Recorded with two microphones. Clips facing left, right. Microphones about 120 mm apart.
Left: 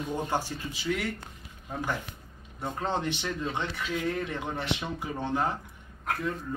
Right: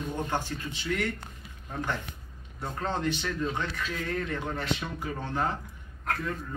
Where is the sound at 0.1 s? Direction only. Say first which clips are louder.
Left 2 dB; 10° left (ahead or behind).